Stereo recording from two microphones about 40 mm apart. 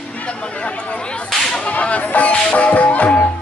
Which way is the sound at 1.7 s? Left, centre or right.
Left.